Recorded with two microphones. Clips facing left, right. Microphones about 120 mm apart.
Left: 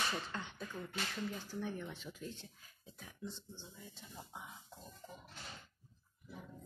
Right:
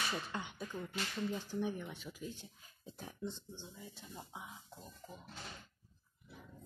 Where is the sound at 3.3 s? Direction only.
20° right (ahead or behind).